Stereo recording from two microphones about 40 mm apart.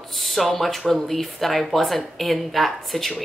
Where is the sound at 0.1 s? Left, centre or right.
Centre.